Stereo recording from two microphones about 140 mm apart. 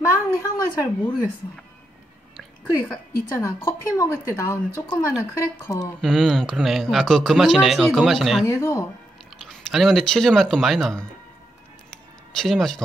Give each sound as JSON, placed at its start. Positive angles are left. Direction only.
{"t": 0.0, "sound": "a sound", "side_deg": 20}
{"t": 3.3, "sound": "a woman's voice", "side_deg": 25}
{"t": 5.9, "sound": "speech", "side_deg": 0}
{"t": 8.5, "sound": "a woman's voice", "side_deg": 20}
{"t": 9.4, "sound": "speech", "side_deg": 0}
{"t": 12.4, "sound": "speech", "side_deg": 0}